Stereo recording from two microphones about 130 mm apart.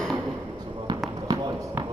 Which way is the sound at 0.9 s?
30° right (ahead or behind).